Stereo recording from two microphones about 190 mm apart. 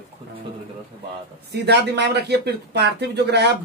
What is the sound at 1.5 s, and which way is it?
Speech, 60° right (ahead or behind).